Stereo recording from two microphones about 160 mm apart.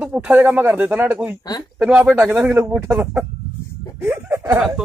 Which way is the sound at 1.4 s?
25° left (ahead or behind).